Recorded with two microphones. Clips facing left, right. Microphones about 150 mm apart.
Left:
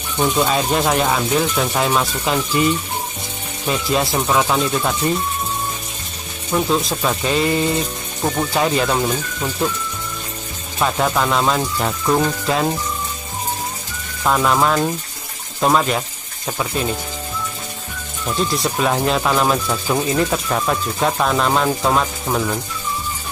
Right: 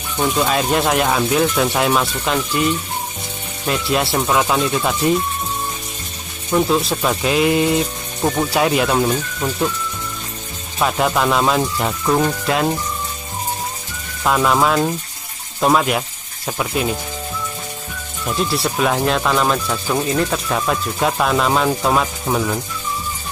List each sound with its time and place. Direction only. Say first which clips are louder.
0.2 s speech: even; centre (ahead or behind)
6.5 s speech: right 2 dB; centre (ahead or behind)
10.8 s speech: right 1 dB; centre (ahead or behind)
14.2 s speech: right 1 dB; centre (ahead or behind)
18.2 s speech: even; 5° right (ahead or behind)